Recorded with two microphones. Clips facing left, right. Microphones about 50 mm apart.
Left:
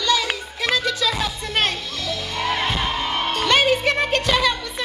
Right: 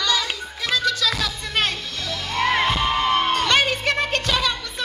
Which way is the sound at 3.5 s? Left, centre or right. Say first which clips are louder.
Left 2 dB; left.